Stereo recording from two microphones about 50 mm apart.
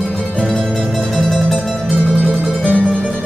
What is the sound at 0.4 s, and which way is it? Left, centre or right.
Music, left.